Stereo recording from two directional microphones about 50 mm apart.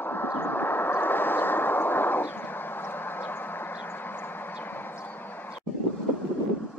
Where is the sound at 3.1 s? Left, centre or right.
Left.